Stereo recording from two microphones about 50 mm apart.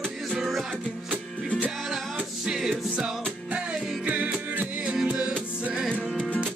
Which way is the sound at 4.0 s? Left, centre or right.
Right.